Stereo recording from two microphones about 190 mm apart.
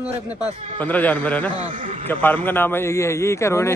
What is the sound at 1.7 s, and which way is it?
Speech, 45° right (ahead or behind).